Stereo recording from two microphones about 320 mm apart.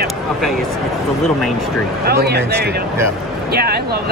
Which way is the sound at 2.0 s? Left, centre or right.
Right.